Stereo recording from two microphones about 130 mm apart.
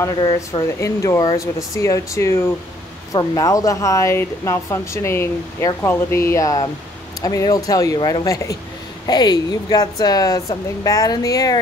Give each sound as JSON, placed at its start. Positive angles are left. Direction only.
{"t": 0.7, "sound": "a woman's voice", "side_deg": 20}